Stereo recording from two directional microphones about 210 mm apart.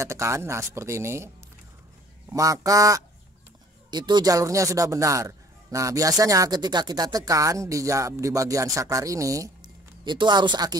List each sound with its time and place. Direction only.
0.0 s speech: 15° right (ahead or behind)